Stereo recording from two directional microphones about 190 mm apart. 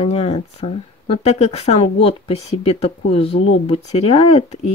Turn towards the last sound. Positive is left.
turn(degrees=35)  # may be behind; listen again after turning